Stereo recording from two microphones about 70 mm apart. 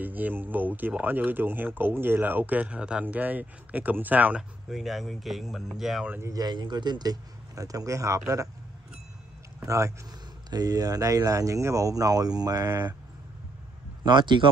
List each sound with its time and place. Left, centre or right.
0.0 s speech: right
4.4 s speech: centre
6.3 s speech: right
9.7 s a man's voice: right
10.5 s speech: right